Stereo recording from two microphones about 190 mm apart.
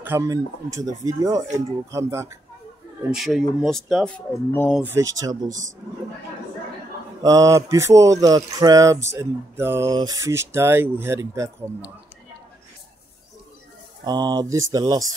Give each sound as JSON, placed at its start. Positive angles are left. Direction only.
{"t": 0.0, "sound": "speech", "side_deg": -15}
{"t": 3.1, "sound": "speech", "side_deg": 0}
{"t": 4.7, "sound": "speech", "side_deg": -10}
{"t": 5.5, "sound": "speech", "side_deg": -40}
{"t": 7.2, "sound": "speech", "side_deg": -15}
{"t": 14.0, "sound": "speech", "side_deg": -20}